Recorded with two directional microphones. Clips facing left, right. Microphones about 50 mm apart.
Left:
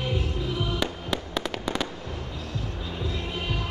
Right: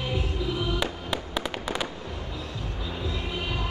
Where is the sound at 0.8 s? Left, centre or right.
Centre.